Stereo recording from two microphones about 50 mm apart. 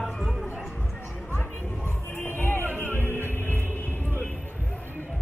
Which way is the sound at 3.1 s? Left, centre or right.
Left.